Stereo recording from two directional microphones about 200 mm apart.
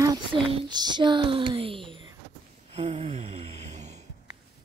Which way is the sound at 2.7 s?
30° right (ahead or behind).